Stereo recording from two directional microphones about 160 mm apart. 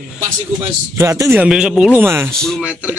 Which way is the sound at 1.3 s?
5° right (ahead or behind).